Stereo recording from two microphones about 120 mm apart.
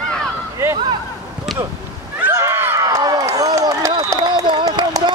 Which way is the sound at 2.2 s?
20° right (ahead or behind).